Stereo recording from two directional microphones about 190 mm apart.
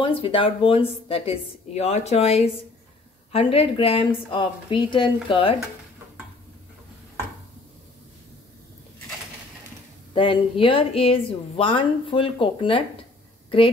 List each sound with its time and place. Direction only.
0.0 s a woman's voice: 30° left (ahead or behind)
10.1 s a woman's voice: 30° left (ahead or behind)